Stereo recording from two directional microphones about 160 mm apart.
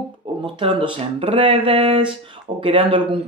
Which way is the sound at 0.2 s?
35° right (ahead or behind).